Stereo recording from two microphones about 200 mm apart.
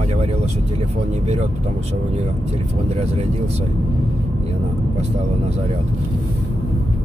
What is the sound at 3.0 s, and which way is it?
Speech, 30° right (ahead or behind).